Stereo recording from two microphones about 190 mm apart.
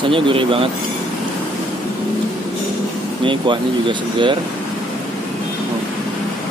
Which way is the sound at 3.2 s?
25° right (ahead or behind).